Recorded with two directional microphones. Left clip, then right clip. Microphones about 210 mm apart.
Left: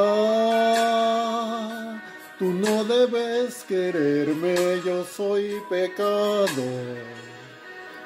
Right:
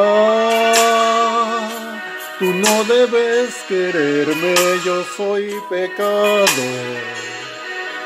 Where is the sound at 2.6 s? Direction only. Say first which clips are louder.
Right 9 dB; 30° right (ahead or behind).